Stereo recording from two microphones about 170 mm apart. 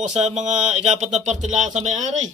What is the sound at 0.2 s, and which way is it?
Speech, 40° right (ahead or behind).